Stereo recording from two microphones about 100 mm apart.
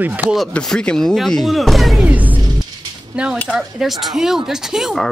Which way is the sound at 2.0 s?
15° right (ahead or behind).